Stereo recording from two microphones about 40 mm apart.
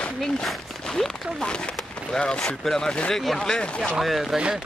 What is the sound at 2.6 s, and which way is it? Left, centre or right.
Speech, centre.